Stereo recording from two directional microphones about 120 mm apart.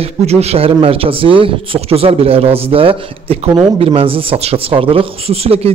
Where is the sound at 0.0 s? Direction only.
60° right (ahead or behind).